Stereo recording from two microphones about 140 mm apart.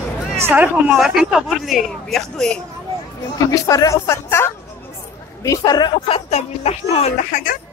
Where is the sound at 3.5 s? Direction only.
20° left (ahead or behind); by 7.3 s 50° left (ahead or behind).